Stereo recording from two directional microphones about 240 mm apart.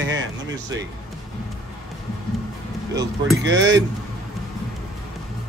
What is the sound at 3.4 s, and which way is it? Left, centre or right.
Speech, right.